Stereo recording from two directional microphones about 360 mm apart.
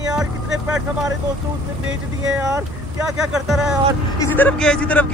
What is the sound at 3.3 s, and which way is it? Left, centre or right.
A man's voice, centre.